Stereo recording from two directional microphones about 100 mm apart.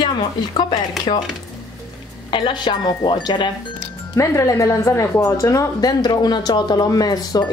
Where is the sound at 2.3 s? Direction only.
55° left (ahead or behind).